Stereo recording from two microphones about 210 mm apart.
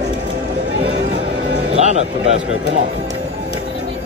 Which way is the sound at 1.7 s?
30° right (ahead or behind).